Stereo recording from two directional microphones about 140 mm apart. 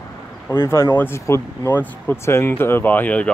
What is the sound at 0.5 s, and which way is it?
Speech, 20° left (ahead or behind).